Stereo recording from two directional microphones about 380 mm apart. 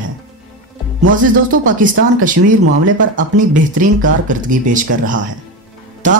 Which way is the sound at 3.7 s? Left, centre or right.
Centre.